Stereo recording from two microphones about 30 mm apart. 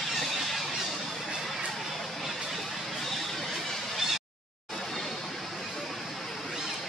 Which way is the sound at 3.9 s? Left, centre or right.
Centre.